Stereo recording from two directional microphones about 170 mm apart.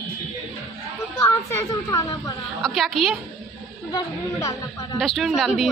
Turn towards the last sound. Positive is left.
turn(degrees=0)  # may be behind; listen again after turning